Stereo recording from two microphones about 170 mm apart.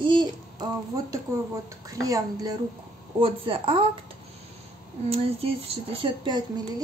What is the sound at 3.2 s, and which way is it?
Speech, 30° right (ahead or behind).